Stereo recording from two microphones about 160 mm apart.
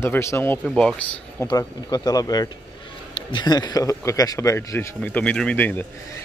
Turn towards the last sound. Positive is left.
turn(degrees=10)  # may be behind; listen again after turning